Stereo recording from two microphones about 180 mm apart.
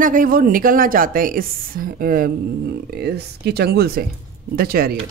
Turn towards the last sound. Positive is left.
turn(degrees=-55)  # may be behind; listen again after turning